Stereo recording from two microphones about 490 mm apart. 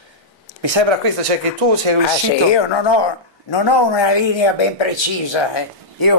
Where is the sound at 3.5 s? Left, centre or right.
Left.